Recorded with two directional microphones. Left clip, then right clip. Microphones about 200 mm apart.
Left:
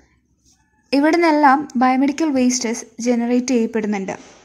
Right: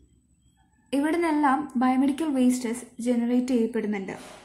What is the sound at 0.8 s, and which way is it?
A woman's voice, 40° left (ahead or behind).